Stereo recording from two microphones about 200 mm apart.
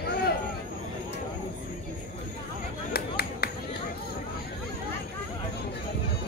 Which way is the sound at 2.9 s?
50° left (ahead or behind).